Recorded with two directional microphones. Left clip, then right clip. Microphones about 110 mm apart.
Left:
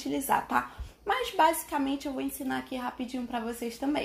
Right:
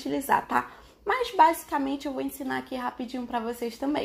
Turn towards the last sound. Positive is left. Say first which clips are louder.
# right 3 dB
turn(degrees=-25)  # may be behind; listen again after turning